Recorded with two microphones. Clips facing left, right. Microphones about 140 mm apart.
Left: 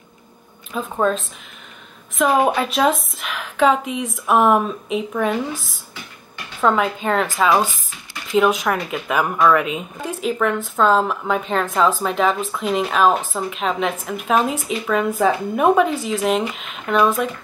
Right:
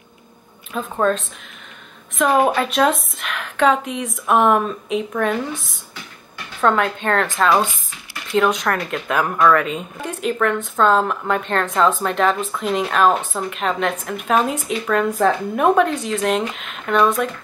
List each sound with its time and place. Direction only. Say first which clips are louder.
0.7 s speech: right 1 dB; centre (ahead or behind)